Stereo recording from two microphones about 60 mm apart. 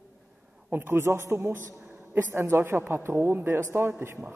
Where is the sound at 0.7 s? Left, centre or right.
Right.